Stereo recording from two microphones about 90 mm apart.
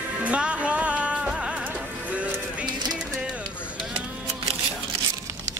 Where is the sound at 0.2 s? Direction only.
15° right (ahead or behind).